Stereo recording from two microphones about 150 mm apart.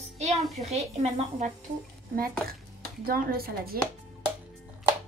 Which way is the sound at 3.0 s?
80° right.